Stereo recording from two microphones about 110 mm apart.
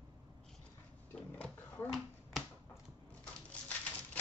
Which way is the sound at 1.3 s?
15° left (ahead or behind).